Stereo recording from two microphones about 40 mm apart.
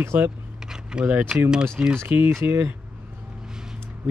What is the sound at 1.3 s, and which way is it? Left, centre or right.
Speech, centre.